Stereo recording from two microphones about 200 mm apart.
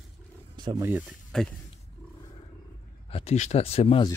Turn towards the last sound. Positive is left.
turn(degrees=25)  # may be behind; listen again after turning